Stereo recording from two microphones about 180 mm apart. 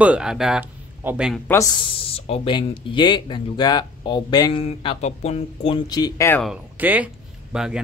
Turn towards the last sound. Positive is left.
turn(degrees=-5)  # may be behind; listen again after turning